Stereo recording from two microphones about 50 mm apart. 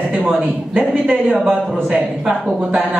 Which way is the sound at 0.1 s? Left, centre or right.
Right.